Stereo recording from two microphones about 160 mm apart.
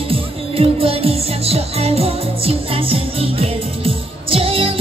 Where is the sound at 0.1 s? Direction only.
35° right (ahead or behind).